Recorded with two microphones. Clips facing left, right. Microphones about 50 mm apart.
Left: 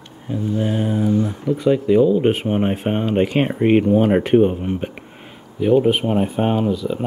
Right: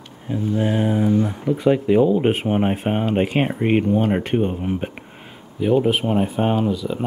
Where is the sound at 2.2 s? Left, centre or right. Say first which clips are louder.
Left 1 dB; centre.